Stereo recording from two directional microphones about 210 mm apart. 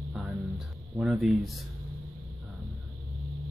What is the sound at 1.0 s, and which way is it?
Speech, 5° right (ahead or behind).